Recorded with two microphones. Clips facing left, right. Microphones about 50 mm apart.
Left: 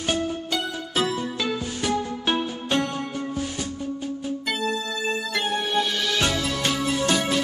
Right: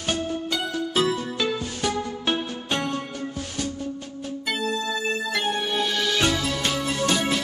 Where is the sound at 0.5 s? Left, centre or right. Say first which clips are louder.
Right 1 dB; centre.